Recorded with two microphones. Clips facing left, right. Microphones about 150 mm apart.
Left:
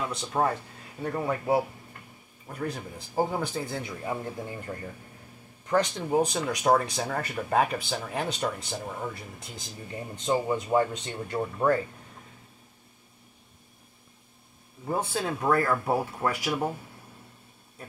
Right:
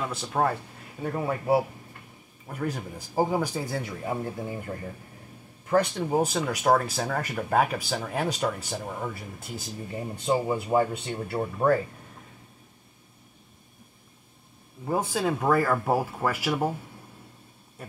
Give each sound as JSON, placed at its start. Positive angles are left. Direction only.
{"t": 0.0, "sound": "speech", "side_deg": -5}
{"t": 5.7, "sound": "speech", "side_deg": -10}
{"t": 14.9, "sound": "speech", "side_deg": -10}